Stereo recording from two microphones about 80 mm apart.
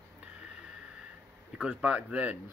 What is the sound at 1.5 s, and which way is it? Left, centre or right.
Speech, centre.